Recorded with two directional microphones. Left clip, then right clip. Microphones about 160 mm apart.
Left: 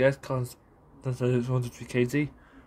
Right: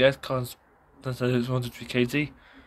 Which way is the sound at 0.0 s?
30° left (ahead or behind).